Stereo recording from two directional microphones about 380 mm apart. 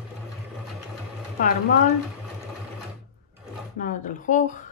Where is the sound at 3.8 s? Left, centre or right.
Left.